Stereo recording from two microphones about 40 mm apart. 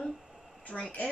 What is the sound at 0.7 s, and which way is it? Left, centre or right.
Speech, left.